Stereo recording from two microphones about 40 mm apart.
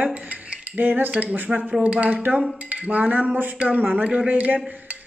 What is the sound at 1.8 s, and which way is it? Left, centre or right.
A woman's voice, right.